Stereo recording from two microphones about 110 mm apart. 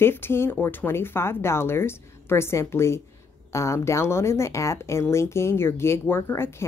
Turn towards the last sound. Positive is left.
turn(degrees=25)  # may be behind; listen again after turning